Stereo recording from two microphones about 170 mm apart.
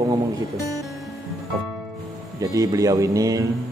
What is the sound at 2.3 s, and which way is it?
Speech, 20° right (ahead or behind).